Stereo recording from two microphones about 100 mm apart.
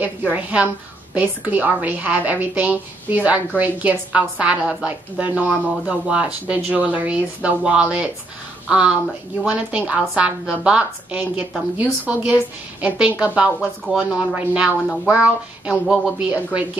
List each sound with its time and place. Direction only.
0.0 s a woman's voice: 15° right (ahead or behind)